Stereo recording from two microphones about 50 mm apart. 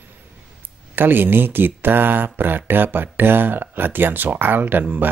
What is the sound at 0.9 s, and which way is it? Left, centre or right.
Speech, right.